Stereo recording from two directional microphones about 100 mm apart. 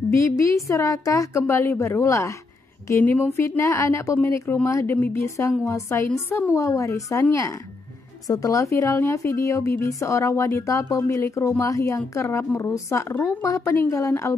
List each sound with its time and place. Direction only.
0.1 s a woman's voice: 30° left (ahead or behind)
3.0 s a woman's voice: 15° left (ahead or behind)
3.3 s a woman's voice: 30° left (ahead or behind)